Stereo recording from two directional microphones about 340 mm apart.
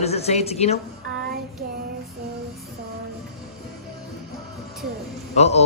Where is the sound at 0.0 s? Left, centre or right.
Centre.